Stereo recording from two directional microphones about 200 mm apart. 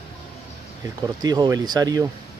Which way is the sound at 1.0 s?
20° right (ahead or behind).